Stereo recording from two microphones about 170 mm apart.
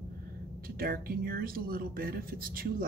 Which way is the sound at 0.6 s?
60° right (ahead or behind).